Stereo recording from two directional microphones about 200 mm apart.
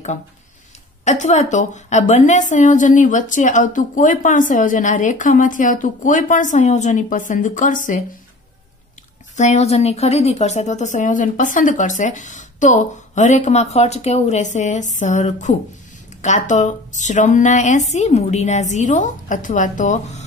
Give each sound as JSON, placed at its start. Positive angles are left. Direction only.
{"t": 1.0, "sound": "a woman's voice", "side_deg": 35}
{"t": 9.4, "sound": "a woman's voice", "side_deg": 35}